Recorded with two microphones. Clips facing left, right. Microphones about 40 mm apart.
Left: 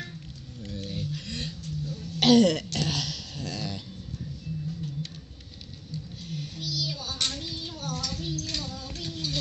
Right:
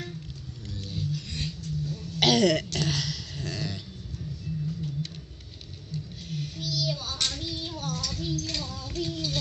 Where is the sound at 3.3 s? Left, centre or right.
Right.